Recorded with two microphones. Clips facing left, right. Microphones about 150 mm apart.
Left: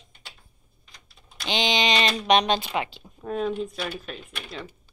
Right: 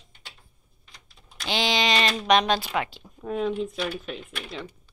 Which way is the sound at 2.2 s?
25° left (ahead or behind).